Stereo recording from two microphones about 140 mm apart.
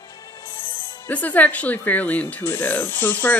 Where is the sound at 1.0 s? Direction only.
10° left (ahead or behind).